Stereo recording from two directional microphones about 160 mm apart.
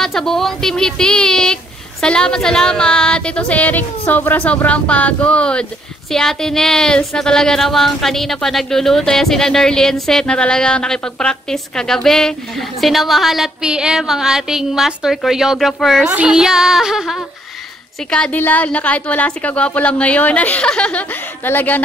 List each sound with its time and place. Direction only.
0.0 s speech: 5° left (ahead or behind)
18.1 s a woman's voice: 10° left (ahead or behind)